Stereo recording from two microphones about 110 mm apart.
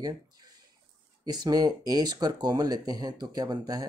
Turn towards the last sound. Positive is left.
turn(degrees=-35)  # may be behind; listen again after turning